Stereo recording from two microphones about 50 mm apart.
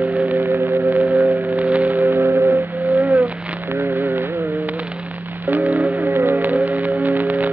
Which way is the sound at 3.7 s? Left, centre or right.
Right.